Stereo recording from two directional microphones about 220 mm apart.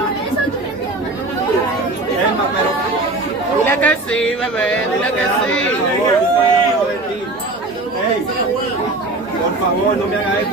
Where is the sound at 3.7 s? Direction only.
5° left (ahead or behind).